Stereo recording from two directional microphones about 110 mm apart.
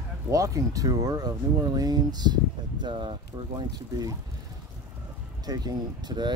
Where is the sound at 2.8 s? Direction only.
50° right (ahead or behind).